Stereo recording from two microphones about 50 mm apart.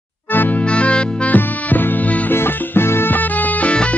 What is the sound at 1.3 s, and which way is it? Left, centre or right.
Music, left.